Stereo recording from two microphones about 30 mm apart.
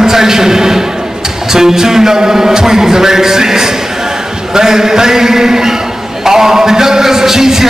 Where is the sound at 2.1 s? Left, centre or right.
Right.